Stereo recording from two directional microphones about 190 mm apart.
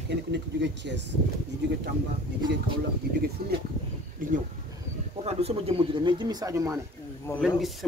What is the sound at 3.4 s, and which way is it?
Speech, 50° right (ahead or behind).